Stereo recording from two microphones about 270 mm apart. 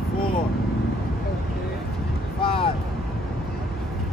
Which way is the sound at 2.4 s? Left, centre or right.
Centre.